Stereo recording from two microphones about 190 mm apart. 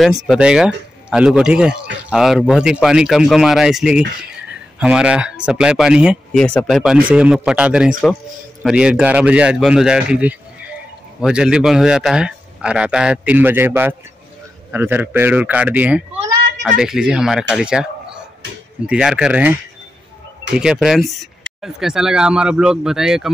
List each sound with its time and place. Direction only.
0.3 s a man's voice: 5° right (ahead or behind)